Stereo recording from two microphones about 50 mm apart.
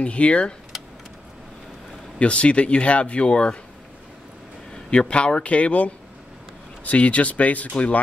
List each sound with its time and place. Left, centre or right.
0.0 s speech: left
2.1 s speech: left
4.9 s speech: left